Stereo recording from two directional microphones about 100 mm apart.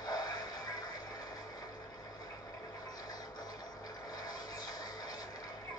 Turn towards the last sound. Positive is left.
turn(degrees=40)  # may be behind; listen again after turning